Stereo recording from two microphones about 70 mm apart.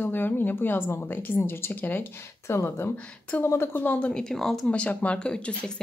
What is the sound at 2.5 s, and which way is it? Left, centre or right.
Speech, left.